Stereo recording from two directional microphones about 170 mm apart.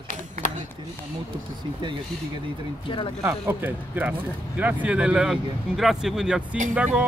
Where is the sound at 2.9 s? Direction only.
30° left (ahead or behind).